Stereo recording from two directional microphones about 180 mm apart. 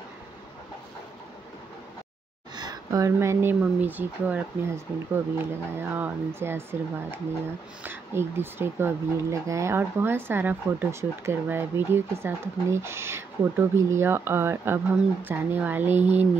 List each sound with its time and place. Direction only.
2.5 s speech: 20° right (ahead or behind)